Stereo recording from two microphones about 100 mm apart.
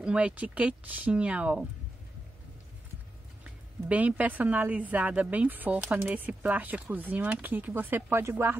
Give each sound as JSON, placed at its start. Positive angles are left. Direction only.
{"t": 0.0, "sound": "a woman's voice", "side_deg": -10}
{"t": 3.4, "sound": "a woman's voice", "side_deg": -15}